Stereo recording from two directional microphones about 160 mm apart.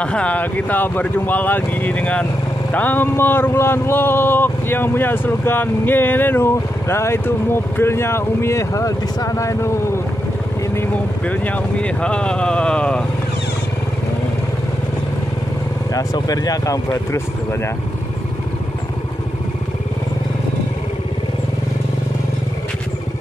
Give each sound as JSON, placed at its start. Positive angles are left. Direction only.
{"t": 0.0, "sound": "speech", "side_deg": 5}
{"t": 10.7, "sound": "speech", "side_deg": 10}
{"t": 15.9, "sound": "speech", "side_deg": 20}